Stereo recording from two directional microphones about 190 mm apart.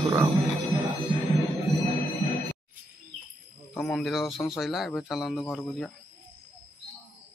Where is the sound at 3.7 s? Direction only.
5° left (ahead or behind).